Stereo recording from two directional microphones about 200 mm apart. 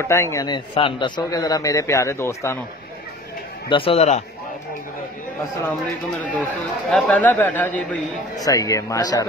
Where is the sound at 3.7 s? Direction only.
30° left (ahead or behind).